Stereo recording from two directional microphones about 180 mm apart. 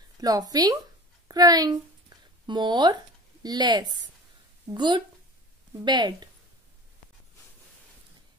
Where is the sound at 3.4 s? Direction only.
25° right (ahead or behind).